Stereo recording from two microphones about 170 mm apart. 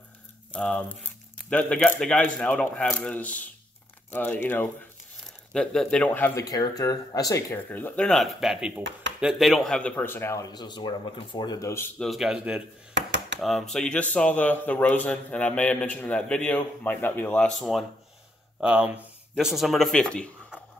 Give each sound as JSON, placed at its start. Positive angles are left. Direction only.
{"t": 0.5, "sound": "speech", "side_deg": 5}
{"t": 12.0, "sound": "speech", "side_deg": 0}
{"t": 12.9, "sound": "a sound", "side_deg": -90}
{"t": 13.4, "sound": "speech", "side_deg": 0}